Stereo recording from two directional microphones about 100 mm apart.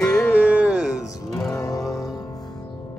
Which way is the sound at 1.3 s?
5° left (ahead or behind).